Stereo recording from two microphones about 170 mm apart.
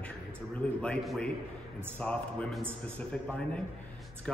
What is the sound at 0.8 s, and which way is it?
A man's voice, 5° left (ahead or behind).